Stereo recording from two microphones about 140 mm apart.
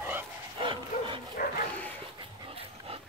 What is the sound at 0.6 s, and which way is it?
Dog, 35° right (ahead or behind).